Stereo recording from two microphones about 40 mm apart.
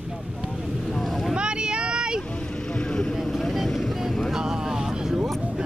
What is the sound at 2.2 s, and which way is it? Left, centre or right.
Vehicle, left.